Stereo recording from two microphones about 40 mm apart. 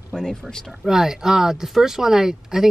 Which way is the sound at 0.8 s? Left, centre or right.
Centre.